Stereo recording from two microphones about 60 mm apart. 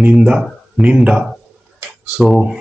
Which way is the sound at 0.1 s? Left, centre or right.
Centre.